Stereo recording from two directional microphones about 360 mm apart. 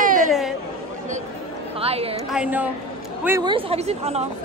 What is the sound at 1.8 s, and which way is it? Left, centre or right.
Speech, centre.